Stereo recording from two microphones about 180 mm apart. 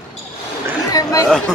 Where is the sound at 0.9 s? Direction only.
20° left (ahead or behind).